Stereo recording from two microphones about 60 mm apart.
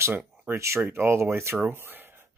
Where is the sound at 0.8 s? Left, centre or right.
Right.